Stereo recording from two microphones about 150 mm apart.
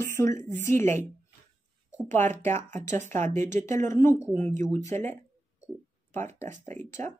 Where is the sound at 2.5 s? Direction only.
55° right (ahead or behind).